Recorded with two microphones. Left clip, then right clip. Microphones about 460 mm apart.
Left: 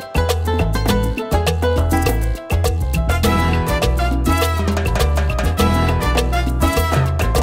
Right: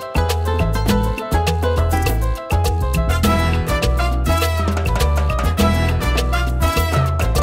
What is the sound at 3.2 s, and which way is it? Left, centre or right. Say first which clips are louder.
Music: left 2 dB; left.